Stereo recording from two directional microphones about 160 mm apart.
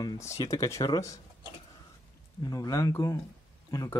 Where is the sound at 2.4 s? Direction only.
25° left (ahead or behind).